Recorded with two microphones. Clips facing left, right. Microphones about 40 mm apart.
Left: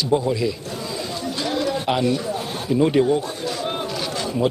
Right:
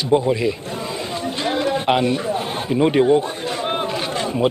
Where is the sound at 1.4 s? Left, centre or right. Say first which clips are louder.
Right 3 dB; right.